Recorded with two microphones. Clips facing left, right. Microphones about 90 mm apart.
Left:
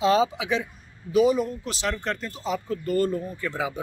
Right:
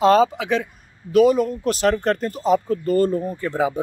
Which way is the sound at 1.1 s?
65° right (ahead or behind).